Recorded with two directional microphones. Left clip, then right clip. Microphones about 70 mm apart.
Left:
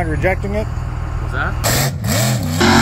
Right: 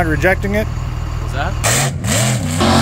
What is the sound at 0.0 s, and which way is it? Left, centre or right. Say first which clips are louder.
Speech: right 4 dB; right.